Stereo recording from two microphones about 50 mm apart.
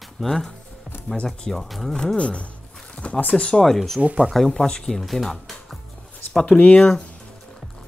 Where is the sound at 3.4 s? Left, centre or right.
Centre.